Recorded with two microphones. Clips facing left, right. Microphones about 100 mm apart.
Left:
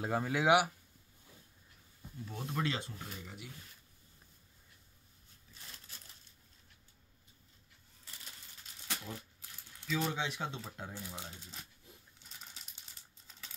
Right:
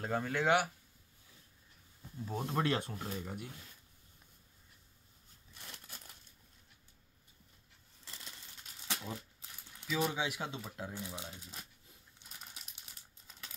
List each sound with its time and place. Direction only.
0.0 s speech: 10° left (ahead or behind)
2.2 s speech: 40° right (ahead or behind)
5.5 s a sound: 55° right (ahead or behind)
8.0 s coin: 90° right
8.8 s a sound: 20° right (ahead or behind)
9.8 s speech: 10° right (ahead or behind)
11.0 s speech: 15° right (ahead or behind)
12.2 s crumpling: 20° right (ahead or behind)